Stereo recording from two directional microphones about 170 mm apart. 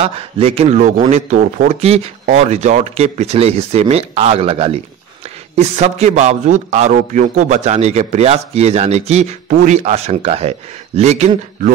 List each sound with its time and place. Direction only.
0.0 s a man's voice: 35° right (ahead or behind)